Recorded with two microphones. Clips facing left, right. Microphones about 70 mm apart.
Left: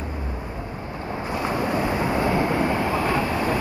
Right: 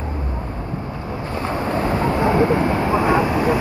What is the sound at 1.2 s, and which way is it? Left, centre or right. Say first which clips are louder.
Vehicle: right 1 dB; centre.